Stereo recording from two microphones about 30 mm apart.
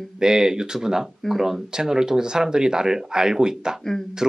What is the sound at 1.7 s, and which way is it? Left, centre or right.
Speech, right.